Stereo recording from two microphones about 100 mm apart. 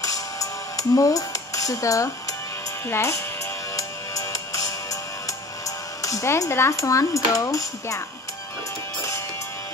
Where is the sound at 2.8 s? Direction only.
25° left (ahead or behind).